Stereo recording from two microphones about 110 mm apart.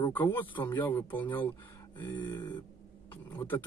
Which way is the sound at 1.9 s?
45° left (ahead or behind).